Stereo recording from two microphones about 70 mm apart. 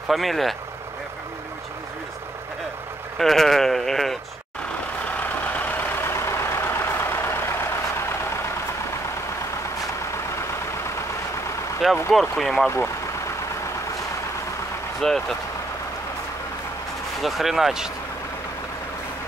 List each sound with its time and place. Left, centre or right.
0.1 s speech: centre
3.2 s speech: centre
5.1 s vehicle: left
12.1 s speech: centre
12.6 s speech: left
15.0 s speech: centre
17.2 s speech: centre